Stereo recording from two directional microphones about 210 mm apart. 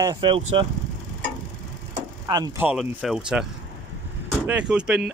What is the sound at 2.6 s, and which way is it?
Speech, 5° right (ahead or behind).